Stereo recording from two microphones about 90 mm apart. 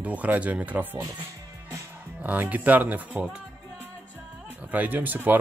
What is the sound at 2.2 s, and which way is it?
Speech, 15° right (ahead or behind).